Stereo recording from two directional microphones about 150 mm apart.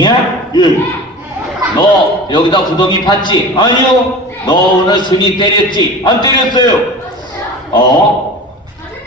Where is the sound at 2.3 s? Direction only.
30° left (ahead or behind).